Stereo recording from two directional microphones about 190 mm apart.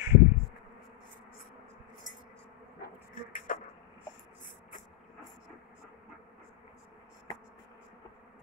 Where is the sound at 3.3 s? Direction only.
45° left (ahead or behind).